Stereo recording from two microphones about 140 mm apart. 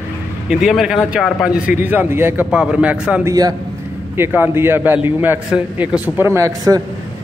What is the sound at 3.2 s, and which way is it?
Speech, 25° right (ahead or behind).